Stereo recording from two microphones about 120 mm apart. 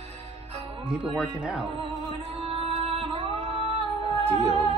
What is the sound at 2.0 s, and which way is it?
Music, 55° right (ahead or behind).